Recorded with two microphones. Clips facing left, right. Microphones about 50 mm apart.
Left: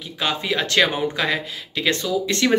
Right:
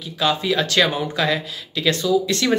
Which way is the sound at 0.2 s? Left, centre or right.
Left.